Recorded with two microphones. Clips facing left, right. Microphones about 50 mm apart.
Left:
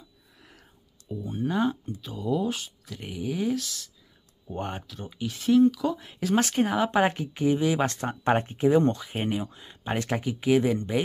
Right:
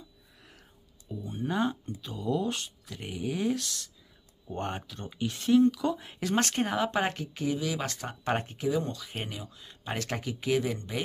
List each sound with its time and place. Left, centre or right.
0.4 s a sound: centre
1.2 s speech: centre
7.0 s speech: centre
8.6 s speech: left
9.7 s speech: centre